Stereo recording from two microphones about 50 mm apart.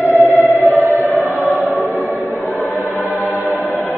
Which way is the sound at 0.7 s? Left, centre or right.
Right.